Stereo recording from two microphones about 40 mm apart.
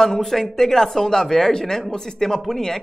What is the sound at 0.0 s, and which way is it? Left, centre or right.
Speech, centre.